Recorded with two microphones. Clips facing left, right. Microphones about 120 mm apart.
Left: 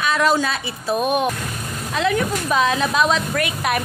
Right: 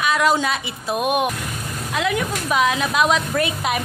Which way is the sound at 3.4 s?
20° right (ahead or behind).